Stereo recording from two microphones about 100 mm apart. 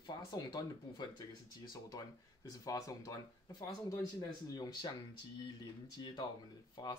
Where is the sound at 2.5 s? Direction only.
35° left (ahead or behind).